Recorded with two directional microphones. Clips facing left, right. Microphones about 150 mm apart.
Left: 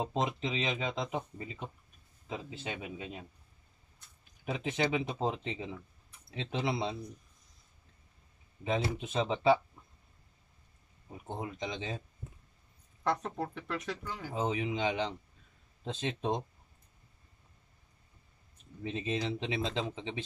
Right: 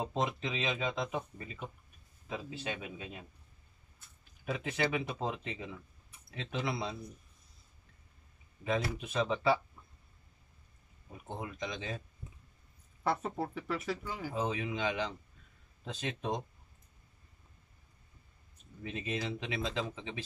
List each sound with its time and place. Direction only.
0.0 s speech: 20° left (ahead or behind)
4.5 s speech: 20° left (ahead or behind)
8.6 s speech: 25° left (ahead or behind)
11.1 s speech: 20° left (ahead or behind)
13.0 s speech: 10° right (ahead or behind)
14.3 s speech: 20° left (ahead or behind)
18.9 s speech: 25° left (ahead or behind)